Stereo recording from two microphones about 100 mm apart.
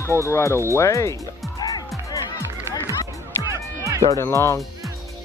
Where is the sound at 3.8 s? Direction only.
30° right (ahead or behind).